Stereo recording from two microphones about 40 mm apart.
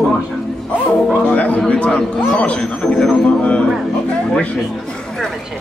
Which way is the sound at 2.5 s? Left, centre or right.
Left.